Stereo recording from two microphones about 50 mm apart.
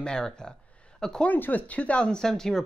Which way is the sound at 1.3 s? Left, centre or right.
Left.